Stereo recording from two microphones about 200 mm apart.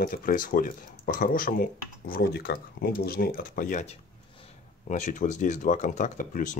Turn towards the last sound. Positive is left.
turn(degrees=40)  # may be behind; listen again after turning